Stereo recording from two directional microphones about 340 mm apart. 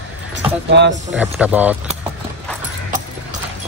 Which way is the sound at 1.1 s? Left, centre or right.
Centre.